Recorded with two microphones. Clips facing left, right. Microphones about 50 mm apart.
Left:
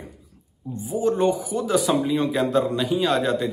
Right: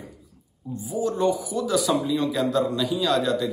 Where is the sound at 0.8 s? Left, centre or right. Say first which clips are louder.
Left 2 dB; left.